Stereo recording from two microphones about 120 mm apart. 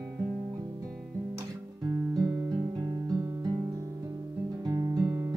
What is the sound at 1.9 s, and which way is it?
Guitar, 30° right (ahead or behind).